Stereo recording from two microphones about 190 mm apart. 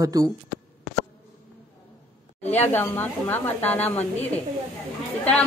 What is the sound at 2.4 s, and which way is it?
A woman's voice, 10° left (ahead or behind).